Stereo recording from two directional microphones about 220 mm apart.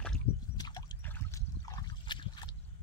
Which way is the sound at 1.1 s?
15° left (ahead or behind).